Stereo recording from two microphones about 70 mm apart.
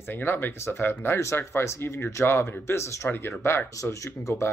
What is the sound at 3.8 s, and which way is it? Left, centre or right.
Speech, left.